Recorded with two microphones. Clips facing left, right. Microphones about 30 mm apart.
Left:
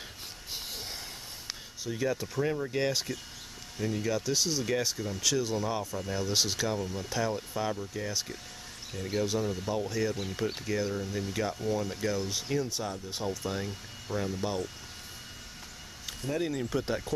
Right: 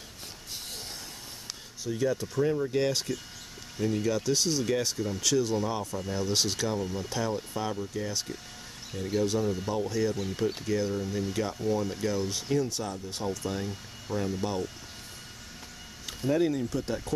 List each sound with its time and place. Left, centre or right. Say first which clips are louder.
1.9 s speech: right 3 dB; centre
16.1 s speech: right 6 dB; centre
16.5 s speech: even; centre